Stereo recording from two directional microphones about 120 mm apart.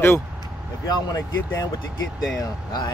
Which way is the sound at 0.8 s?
30° left (ahead or behind).